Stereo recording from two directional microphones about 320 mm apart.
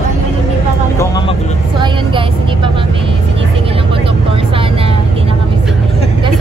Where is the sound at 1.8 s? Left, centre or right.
Centre.